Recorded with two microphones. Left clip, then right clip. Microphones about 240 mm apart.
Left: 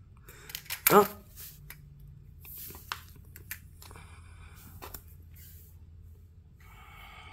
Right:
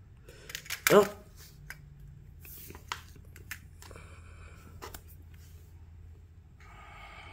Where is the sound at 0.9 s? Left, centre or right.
Centre.